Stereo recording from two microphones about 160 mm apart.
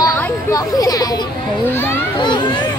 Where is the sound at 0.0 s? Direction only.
20° left (ahead or behind).